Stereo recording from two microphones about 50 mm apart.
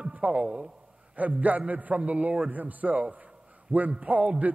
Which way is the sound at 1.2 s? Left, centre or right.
Right.